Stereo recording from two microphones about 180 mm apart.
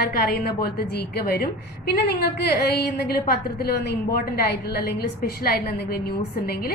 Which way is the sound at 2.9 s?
60° left (ahead or behind).